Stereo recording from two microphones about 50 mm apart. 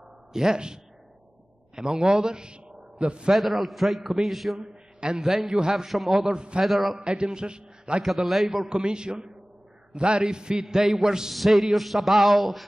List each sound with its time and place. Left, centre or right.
0.3 s a man's voice: centre
1.8 s a man's voice: centre
3.3 s a man's voice: centre
6.3 s a man's voice: centre
6.6 s a man's voice: centre
7.0 s a man's voice: centre
8.0 s a man's voice: centre
8.6 s a man's voice: centre